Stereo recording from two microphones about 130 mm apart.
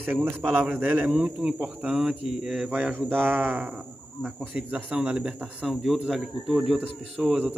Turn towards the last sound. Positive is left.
turn(degrees=-10)  # may be behind; listen again after turning